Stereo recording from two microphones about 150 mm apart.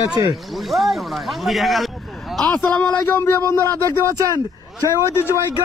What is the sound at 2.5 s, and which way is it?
Speech, 10° left (ahead or behind).